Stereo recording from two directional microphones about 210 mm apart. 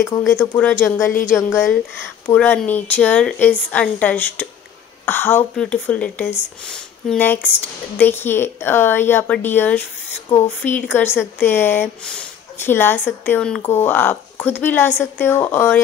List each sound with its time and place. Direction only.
0.3 s speech: 15° left (ahead or behind)